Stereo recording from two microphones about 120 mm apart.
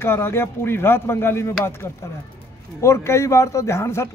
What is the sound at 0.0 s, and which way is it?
A man's voice, 20° left (ahead or behind).